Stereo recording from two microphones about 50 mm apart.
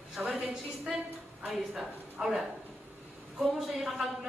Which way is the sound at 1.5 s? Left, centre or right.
Centre.